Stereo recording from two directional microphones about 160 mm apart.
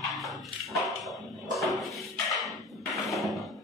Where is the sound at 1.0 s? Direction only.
Centre (ahead or behind).